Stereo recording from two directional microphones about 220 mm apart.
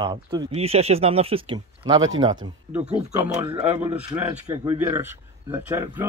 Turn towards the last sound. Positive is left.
turn(degrees=-10)  # may be behind; listen again after turning